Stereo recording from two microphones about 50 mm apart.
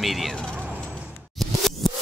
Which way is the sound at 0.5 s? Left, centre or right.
Right.